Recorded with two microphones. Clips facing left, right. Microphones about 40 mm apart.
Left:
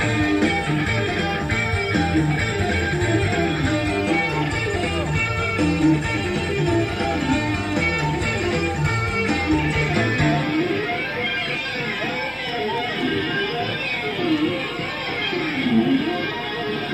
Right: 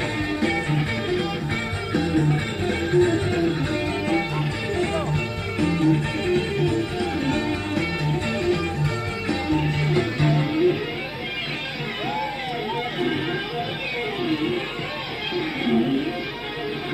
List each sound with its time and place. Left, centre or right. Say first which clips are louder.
0.2 s music: left 4 dB; left
2.9 s music: right 3 dB; left
5.6 s music: left 2 dB; left
9.3 s music: even; left